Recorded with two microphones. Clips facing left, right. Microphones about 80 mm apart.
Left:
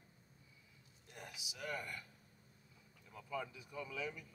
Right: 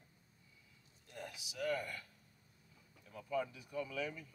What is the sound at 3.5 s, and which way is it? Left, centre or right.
Speech, centre.